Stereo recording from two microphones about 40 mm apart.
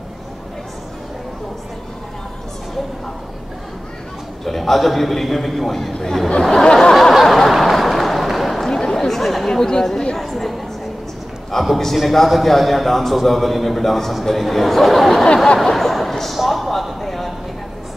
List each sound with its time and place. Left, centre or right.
4.5 s a man's voice: centre
5.9 s a sound: centre
9.5 s chatter: centre
10.1 s a man's voice: centre
11.5 s a man's voice: centre
15.2 s a sound: centre
15.6 s a man's voice: centre